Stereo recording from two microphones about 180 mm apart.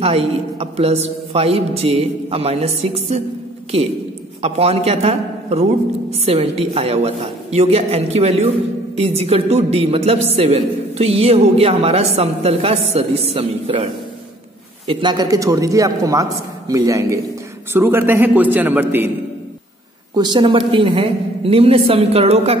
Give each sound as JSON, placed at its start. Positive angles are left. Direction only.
{"t": 0.0, "sound": "a woman's voice", "side_deg": -35}
{"t": 14.9, "sound": "a man's voice", "side_deg": -25}
{"t": 20.2, "sound": "a woman's voice", "side_deg": -25}